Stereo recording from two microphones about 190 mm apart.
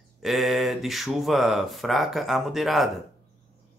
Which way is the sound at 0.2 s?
Centre (ahead or behind).